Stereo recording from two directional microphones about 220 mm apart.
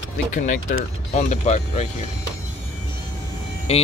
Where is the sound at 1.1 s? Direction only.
30° left (ahead or behind).